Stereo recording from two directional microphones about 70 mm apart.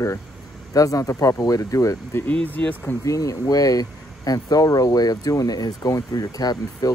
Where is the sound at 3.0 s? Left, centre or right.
Left.